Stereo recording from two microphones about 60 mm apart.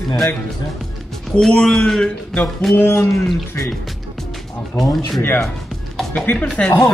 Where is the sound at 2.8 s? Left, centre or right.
Left.